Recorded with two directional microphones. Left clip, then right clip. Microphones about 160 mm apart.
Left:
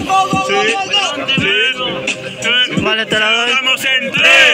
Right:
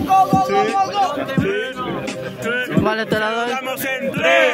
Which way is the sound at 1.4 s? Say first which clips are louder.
Left 9 dB; 70° right (ahead or behind).